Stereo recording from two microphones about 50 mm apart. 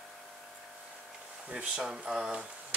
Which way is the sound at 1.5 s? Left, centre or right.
Centre.